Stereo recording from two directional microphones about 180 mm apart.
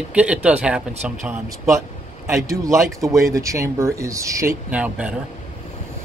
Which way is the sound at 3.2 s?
15° right (ahead or behind).